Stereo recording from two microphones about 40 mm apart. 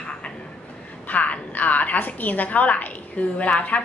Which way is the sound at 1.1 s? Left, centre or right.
Left.